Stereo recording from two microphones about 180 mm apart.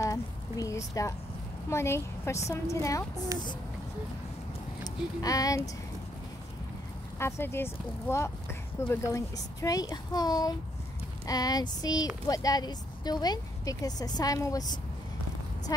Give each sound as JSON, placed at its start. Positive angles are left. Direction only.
{"t": 0.0, "sound": "a sound", "side_deg": 20}
{"t": 1.7, "sound": "speech", "side_deg": 15}
{"t": 4.8, "sound": "speech", "side_deg": 20}
{"t": 7.2, "sound": "speech", "side_deg": 15}